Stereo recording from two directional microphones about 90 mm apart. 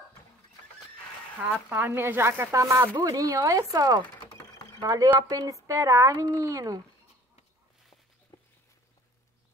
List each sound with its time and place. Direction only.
1.7 s speech: 25° right (ahead or behind)